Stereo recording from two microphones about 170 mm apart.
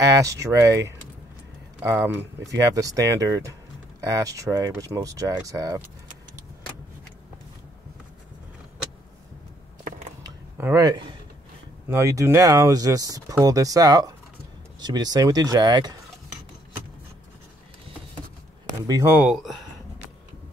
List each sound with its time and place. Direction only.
0.1 s speech: 20° right (ahead or behind)
10.2 s a sound: 20° right (ahead or behind)
11.9 s speech: 15° right (ahead or behind)
18.7 s speech: 20° right (ahead or behind)
19.3 s speech: centre (ahead or behind)